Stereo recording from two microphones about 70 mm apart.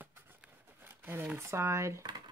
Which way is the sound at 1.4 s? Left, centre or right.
Right.